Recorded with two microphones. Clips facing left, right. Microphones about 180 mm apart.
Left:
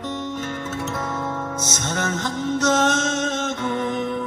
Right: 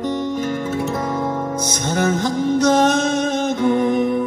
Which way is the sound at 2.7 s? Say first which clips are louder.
Right 5 dB; 60° right (ahead or behind).